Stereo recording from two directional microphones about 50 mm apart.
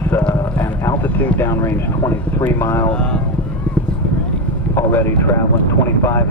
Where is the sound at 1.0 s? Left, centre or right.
Left.